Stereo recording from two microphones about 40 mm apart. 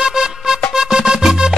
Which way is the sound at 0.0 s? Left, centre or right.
Centre.